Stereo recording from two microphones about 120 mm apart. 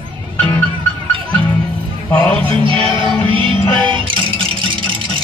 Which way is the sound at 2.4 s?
45° right (ahead or behind).